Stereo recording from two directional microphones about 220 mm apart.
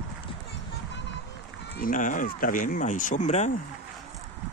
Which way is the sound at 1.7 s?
40° left (ahead or behind).